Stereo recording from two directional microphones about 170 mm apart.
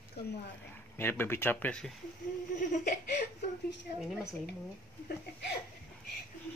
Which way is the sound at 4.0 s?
Centre (ahead or behind).